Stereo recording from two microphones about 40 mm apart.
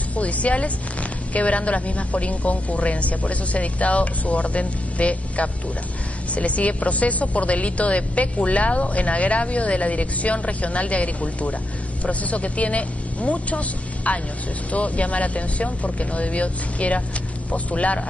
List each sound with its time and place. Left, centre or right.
0.1 s a woman's voice: left